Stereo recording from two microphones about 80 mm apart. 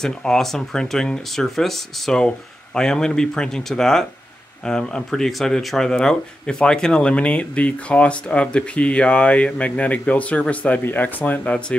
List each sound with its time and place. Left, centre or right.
0.0 s speech: centre